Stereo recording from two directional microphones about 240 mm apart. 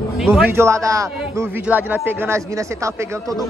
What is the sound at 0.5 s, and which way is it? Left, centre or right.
Speech, centre.